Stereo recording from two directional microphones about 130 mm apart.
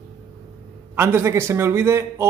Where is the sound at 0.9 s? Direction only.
20° right (ahead or behind).